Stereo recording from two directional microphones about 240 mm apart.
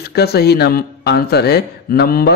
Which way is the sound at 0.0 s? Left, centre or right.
Left.